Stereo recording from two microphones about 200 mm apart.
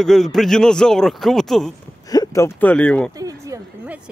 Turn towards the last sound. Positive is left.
turn(degrees=-5)  # may be behind; listen again after turning